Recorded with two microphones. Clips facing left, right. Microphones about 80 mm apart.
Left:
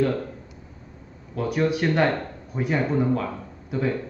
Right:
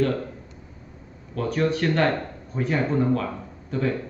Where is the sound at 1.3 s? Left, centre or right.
Centre.